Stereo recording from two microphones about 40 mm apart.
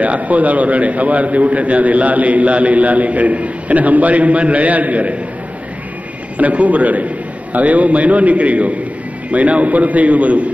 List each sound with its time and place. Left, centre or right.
0.0 s a man's voice: right
6.3 s a man's voice: right